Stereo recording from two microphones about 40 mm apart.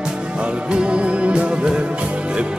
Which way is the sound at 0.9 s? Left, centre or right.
Right.